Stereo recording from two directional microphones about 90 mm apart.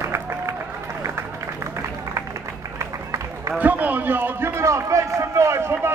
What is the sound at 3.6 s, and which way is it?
Run, 20° right (ahead or behind).